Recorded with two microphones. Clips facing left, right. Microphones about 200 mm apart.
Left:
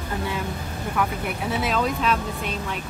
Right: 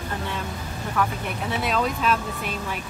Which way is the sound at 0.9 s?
5° left (ahead or behind).